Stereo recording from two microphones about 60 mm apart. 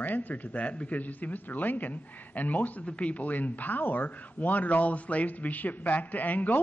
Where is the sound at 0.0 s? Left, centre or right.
Left.